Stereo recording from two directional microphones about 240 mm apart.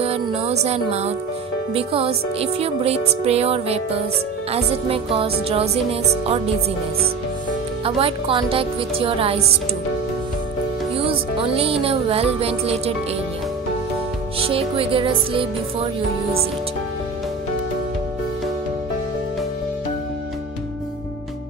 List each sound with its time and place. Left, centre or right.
0.0 s music: right
7.8 s music: right
11.1 s music: right
14.4 s music: right